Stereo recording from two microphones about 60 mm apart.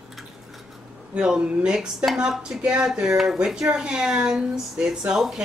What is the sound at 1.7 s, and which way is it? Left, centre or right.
Speech, centre.